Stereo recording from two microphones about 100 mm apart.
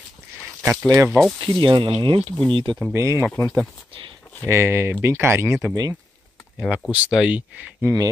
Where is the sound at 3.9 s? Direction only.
55° right (ahead or behind).